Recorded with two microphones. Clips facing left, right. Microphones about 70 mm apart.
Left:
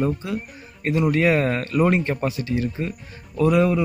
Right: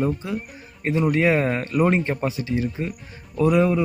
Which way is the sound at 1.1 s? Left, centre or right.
Centre.